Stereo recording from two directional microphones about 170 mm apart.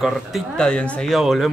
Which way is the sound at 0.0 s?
Centre (ahead or behind).